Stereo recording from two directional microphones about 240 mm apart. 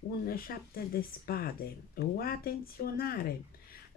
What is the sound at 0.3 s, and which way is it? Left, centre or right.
Speech, left.